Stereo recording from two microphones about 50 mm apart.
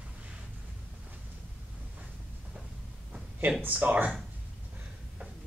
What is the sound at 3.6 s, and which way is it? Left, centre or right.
Speech, right.